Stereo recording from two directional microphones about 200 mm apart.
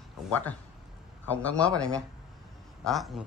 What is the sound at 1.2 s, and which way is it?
Speech, 5° left (ahead or behind).